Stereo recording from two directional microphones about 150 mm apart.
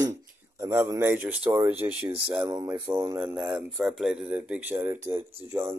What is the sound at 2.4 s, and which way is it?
Speech, 25° right (ahead or behind).